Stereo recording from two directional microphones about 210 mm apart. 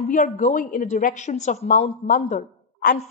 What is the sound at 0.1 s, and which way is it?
Speech, 35° left (ahead or behind).